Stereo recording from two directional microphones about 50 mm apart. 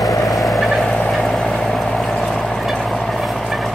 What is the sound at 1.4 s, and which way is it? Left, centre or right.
Vehicle, centre.